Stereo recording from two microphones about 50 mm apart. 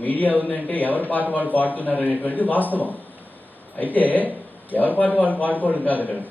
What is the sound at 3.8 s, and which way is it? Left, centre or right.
A man's voice, left.